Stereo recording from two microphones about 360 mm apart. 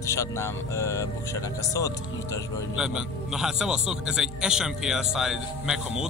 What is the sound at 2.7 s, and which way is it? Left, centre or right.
A man's voice, centre.